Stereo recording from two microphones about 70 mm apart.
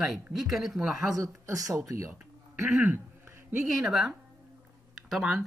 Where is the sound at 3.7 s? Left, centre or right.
Centre.